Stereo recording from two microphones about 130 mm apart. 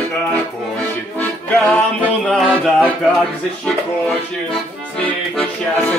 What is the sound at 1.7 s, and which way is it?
Mantra, 5° left (ahead or behind).